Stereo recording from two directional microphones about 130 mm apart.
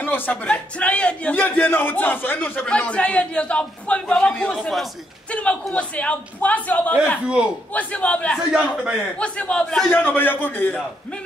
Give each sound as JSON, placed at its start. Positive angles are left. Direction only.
{"t": 0.0, "sound": "a man's voice", "side_deg": 15}
{"t": 8.5, "sound": "speech", "side_deg": -5}
{"t": 9.2, "sound": "a man's voice", "side_deg": 10}